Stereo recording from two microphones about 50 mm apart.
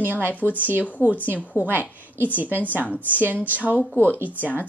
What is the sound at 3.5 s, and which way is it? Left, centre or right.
Speech, right.